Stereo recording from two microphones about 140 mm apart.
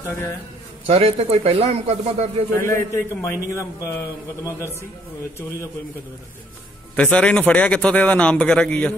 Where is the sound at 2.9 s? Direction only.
20° left (ahead or behind).